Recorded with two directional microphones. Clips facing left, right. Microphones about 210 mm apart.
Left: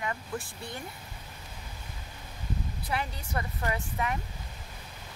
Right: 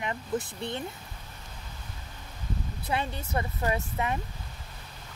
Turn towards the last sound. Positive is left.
turn(degrees=-25)  # may be behind; listen again after turning